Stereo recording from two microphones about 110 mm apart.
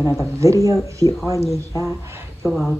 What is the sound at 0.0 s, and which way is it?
Speech, 25° left (ahead or behind).